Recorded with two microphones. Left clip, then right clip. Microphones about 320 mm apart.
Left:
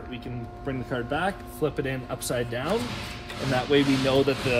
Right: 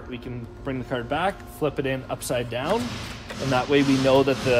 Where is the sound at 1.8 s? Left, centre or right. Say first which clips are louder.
Right 3 dB; centre.